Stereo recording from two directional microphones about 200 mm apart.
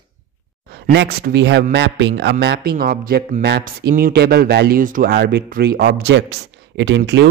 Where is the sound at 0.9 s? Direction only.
55° right (ahead or behind).